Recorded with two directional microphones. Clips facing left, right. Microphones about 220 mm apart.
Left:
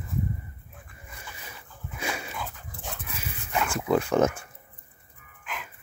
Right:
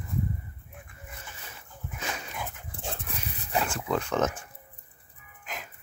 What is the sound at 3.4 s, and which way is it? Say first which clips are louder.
Pig: even; 35° right (ahead or behind).